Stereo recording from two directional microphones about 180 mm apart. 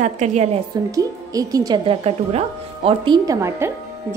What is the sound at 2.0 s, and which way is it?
Speech, 30° right (ahead or behind).